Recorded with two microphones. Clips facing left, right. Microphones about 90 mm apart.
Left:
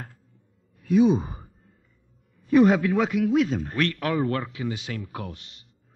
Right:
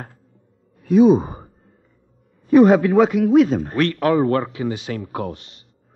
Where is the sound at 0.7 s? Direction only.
40° right (ahead or behind).